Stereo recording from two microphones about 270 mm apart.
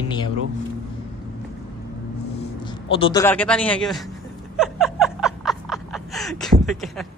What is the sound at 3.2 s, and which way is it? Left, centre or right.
Speech, centre.